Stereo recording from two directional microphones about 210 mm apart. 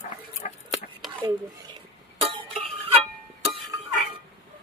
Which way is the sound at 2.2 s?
25° right (ahead or behind).